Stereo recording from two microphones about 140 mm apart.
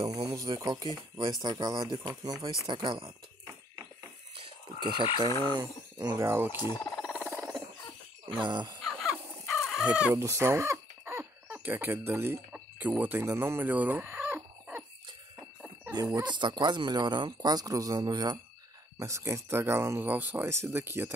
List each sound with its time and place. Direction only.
0.0 s speech: 25° right (ahead or behind)
4.7 s speech: 30° right (ahead or behind); by 6.6 s 15° right (ahead or behind)
7.2 s a sound: 10° right (ahead or behind)
8.4 s speech: 35° right (ahead or behind)
8.8 s chicken: centre (ahead or behind)
10.1 s cough: 20° right (ahead or behind)
15.3 s wild animals: 5° right (ahead or behind)
16.2 s speech: 35° right (ahead or behind); by 21.1 s 15° right (ahead or behind)